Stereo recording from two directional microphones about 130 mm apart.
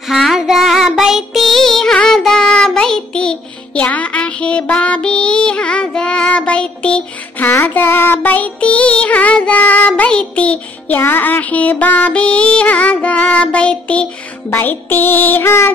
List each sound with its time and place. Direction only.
0.1 s child singing: centre (ahead or behind); by 15.7 s 20° left (ahead or behind)